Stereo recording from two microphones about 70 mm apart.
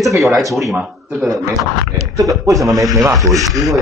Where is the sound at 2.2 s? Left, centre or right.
Right.